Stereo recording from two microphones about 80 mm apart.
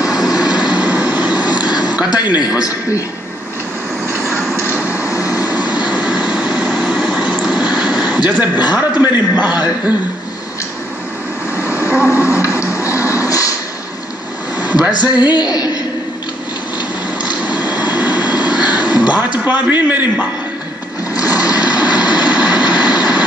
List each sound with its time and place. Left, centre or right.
0.2 s vehicle: left
0.7 s train: centre
1.6 s a sound: left
2.0 s a woman's voice: left
4.3 s vehicle: centre
4.7 s vehicle: centre
8.6 s a man's voice: centre
11.5 s vehicle: centre
12.5 s a sound: left
14.6 s a sound: centre
15.0 s a woman's voice: left
17.2 s vehicle: centre